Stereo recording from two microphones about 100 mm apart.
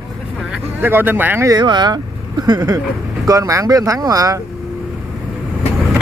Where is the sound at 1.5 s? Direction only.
45° right (ahead or behind).